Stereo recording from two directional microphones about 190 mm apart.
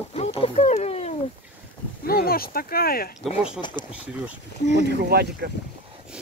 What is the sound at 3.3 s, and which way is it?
Speech, 30° left (ahead or behind).